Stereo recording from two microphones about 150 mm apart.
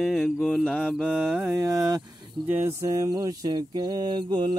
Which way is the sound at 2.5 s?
20° right (ahead or behind).